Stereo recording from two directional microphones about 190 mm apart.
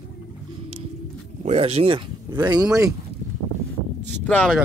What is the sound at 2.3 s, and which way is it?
Speech, 10° right (ahead or behind).